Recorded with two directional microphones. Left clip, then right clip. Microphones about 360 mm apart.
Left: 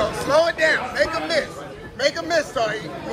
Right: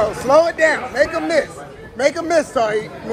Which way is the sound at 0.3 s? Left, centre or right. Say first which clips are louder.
Right 4 dB; centre.